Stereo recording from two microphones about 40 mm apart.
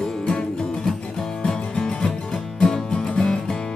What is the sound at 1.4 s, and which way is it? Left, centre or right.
Music, left.